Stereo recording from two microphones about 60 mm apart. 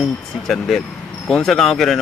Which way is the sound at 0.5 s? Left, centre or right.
Centre.